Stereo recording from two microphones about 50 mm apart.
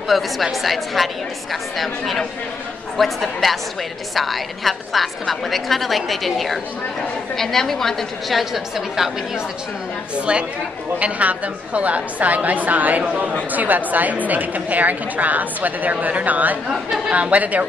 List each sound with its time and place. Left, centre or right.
0.1 s a woman's voice: centre
10.1 s a woman's voice: right